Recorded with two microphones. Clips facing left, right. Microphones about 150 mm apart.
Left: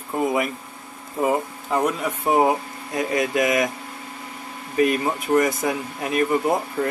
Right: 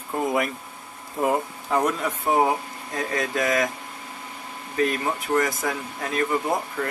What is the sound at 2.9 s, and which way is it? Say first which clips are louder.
Speech: left 4 dB; 20° left (ahead or behind).